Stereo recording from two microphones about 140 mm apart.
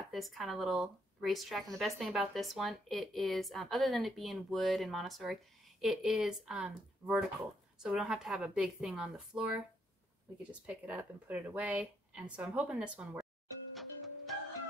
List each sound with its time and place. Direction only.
0.1 s a woman's voice: centre (ahead or behind)
13.7 s music: centre (ahead or behind)